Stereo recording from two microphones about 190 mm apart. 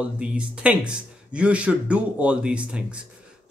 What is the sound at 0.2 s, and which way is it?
A man's voice, 5° right (ahead or behind).